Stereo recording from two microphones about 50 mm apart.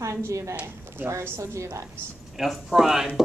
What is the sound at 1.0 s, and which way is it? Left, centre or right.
Speech, right.